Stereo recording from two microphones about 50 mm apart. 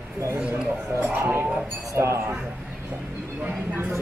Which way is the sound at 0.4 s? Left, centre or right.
Right.